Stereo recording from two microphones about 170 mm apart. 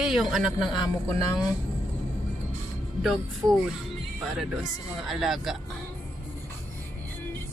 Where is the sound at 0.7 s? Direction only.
20° left (ahead or behind).